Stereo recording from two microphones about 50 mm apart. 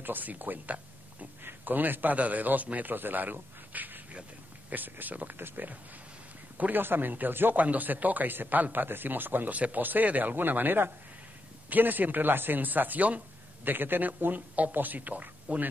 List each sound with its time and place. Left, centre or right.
0.0 s a man's voice: right